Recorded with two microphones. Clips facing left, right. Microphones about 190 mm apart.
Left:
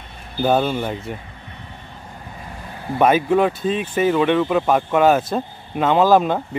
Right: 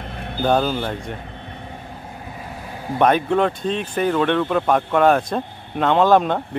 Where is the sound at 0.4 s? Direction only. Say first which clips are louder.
Left 1 dB; 5° left (ahead or behind).